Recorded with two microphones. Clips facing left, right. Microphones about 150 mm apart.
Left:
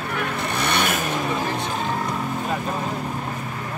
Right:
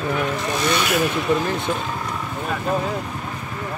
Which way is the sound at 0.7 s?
50° left (ahead or behind).